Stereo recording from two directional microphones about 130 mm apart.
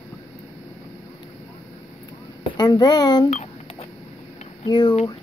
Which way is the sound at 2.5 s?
30° left (ahead or behind).